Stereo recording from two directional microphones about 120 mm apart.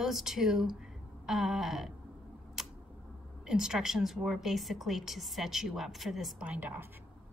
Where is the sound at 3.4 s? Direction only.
5° right (ahead or behind).